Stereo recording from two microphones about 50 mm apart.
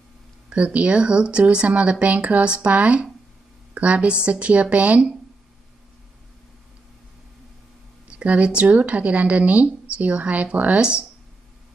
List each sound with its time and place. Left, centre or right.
0.7 s speech: right
8.1 s speech: right